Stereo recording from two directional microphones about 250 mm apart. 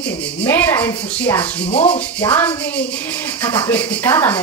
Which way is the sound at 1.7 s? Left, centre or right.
Left.